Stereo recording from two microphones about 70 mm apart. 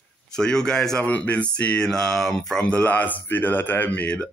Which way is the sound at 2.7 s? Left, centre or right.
Left.